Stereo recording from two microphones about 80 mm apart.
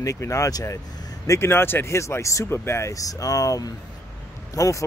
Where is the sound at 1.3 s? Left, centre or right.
Left.